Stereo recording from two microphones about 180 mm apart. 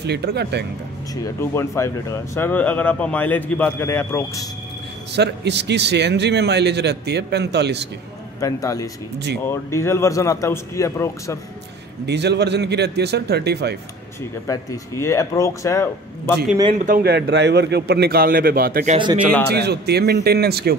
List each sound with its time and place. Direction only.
0.0 s a man's voice: 65° right (ahead or behind)
1.1 s speech: 15° left (ahead or behind)
5.1 s a man's voice: 70° right (ahead or behind)
8.4 s a man's voice: 20° left (ahead or behind)
12.1 s a man's voice: 70° right (ahead or behind)
14.5 s speech: 15° left (ahead or behind)
16.7 s a man's voice: 50° right (ahead or behind)
19.5 s a man's voice: 65° right (ahead or behind)